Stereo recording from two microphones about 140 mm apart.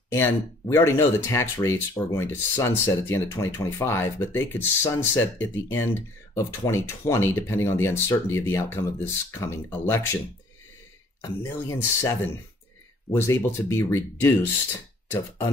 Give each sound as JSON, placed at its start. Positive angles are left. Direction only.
{"t": 0.1, "sound": "speech", "side_deg": 15}
{"t": 11.1, "sound": "speech", "side_deg": 20}